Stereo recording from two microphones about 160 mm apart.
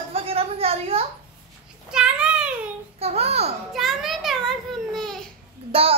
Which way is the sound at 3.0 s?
40° right (ahead or behind).